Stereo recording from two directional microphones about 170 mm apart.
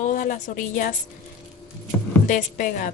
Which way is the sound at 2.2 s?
50° left (ahead or behind).